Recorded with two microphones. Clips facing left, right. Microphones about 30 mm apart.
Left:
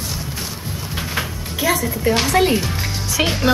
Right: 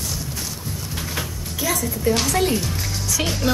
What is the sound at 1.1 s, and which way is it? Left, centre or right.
Speech, left.